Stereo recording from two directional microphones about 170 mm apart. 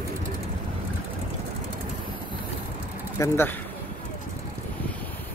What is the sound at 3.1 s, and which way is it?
Speech, 15° left (ahead or behind).